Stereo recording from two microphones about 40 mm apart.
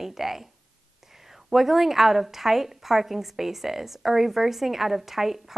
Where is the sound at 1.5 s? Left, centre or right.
Centre.